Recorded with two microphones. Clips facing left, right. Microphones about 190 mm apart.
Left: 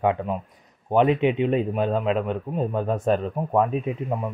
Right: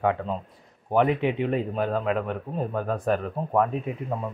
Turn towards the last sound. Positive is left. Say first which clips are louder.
# left 3 dB
turn(degrees=20)  # may be behind; listen again after turning